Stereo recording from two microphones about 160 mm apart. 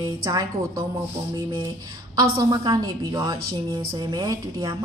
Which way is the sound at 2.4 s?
25° right (ahead or behind).